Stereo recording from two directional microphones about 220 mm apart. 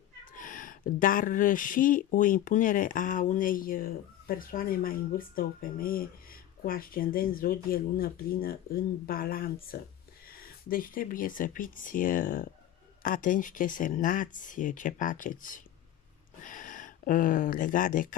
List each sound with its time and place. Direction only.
0.3 s speech: 40° left (ahead or behind)